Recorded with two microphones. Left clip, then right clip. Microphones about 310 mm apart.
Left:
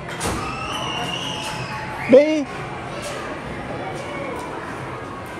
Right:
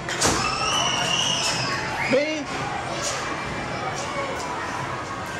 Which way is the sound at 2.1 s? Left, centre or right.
Centre.